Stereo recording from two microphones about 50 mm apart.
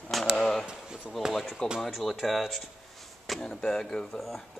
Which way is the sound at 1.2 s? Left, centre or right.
Centre.